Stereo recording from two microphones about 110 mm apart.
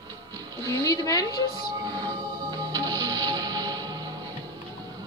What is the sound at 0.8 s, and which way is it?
Speech, 30° left (ahead or behind).